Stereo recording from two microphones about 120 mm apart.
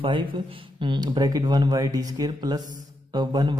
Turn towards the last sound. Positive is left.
turn(degrees=-35)  # may be behind; listen again after turning